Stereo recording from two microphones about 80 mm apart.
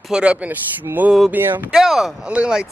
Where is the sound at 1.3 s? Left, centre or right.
Right.